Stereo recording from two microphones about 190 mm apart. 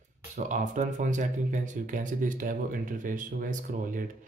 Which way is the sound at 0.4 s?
40° right (ahead or behind).